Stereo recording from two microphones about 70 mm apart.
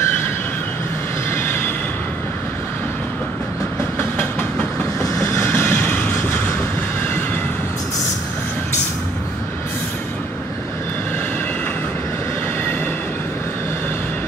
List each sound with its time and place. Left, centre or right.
1.3 s train: left
5.2 s train: left